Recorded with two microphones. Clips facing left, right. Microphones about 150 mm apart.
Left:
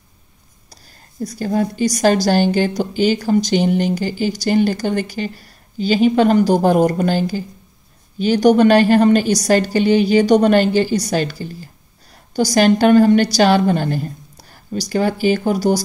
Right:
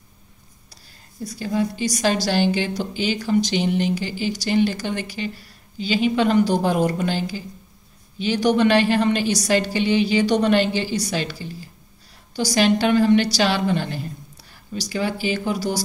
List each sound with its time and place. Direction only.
1.2 s a woman's voice: 45° left (ahead or behind)